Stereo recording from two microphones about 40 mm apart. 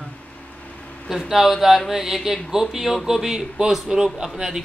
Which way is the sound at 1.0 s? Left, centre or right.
Centre.